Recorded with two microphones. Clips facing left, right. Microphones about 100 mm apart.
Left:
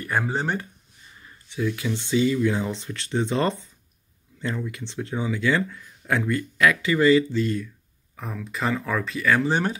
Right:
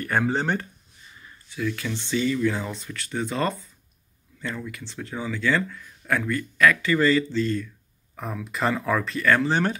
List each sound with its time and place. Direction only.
0.0 s speech: 5° left (ahead or behind)
1.5 s speech: 20° left (ahead or behind)
8.2 s speech: centre (ahead or behind)